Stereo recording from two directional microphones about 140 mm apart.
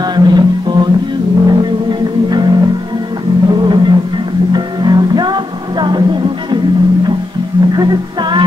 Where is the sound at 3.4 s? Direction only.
35° right (ahead or behind).